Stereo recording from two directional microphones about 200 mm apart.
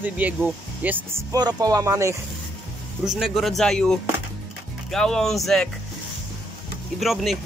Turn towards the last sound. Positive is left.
turn(degrees=0)  # may be behind; listen again after turning